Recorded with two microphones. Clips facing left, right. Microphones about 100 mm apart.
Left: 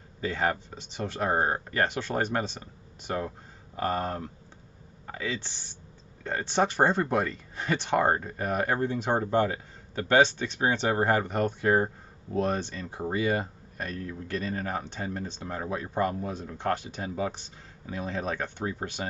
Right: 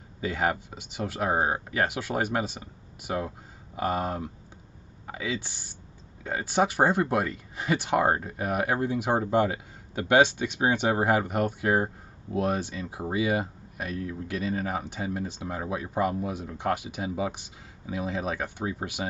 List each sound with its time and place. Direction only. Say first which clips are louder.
0.2 s speech: right 1 dB; 10° right (ahead or behind)